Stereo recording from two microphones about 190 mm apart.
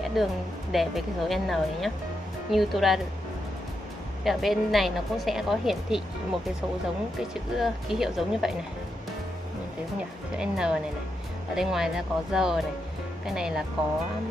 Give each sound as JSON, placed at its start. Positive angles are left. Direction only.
{"t": 0.1, "sound": "speech", "side_deg": 0}
{"t": 4.2, "sound": "speech", "side_deg": 0}
{"t": 7.5, "sound": "speech", "side_deg": 0}
{"t": 10.3, "sound": "speech", "side_deg": -5}